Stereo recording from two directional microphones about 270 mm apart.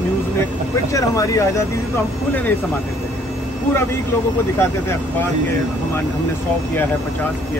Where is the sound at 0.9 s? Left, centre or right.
Centre.